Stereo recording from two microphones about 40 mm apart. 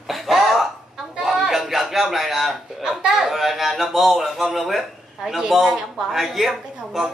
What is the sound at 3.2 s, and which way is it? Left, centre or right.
A man's voice, centre.